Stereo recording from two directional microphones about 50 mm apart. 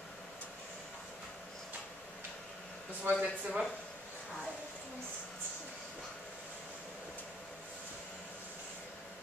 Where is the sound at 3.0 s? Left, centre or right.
Right.